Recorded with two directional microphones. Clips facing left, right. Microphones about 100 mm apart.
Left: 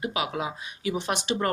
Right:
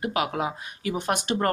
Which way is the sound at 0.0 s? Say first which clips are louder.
Right 3 dB; 50° right (ahead or behind).